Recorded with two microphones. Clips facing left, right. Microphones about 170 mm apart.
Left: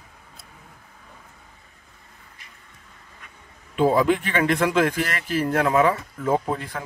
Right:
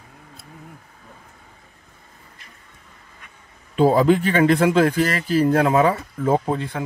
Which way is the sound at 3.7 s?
35° right (ahead or behind).